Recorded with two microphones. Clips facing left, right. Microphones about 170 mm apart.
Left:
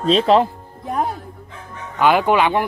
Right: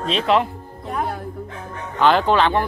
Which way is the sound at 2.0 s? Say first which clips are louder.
Left 1 dB; 10° left (ahead or behind).